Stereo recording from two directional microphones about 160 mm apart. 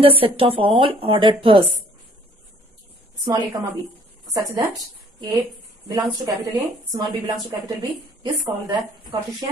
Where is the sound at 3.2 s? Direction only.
25° right (ahead or behind).